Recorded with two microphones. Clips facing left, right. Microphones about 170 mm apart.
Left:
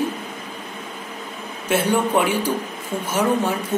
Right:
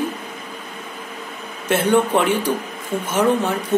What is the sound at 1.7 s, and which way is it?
A woman's voice, 10° left (ahead or behind).